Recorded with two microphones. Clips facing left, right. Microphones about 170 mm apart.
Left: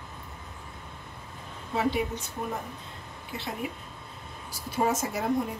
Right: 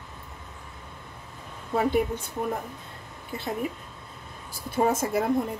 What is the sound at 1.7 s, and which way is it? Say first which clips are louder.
Speech: right 4 dB; 50° right (ahead or behind).